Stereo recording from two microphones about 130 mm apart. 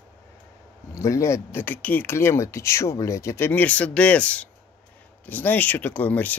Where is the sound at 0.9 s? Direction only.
25° left (ahead or behind).